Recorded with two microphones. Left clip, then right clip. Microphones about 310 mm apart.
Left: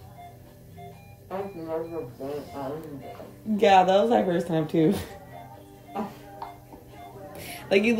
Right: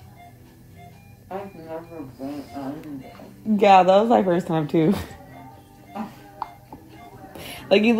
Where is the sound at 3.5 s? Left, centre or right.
Right.